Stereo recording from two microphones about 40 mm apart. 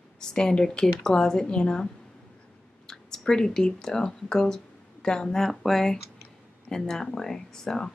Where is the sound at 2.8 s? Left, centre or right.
Centre.